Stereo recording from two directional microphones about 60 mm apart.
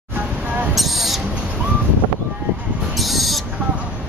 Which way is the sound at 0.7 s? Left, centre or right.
Centre.